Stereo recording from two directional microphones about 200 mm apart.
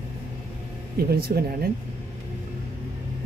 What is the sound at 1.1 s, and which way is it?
Speech, 50° right (ahead or behind).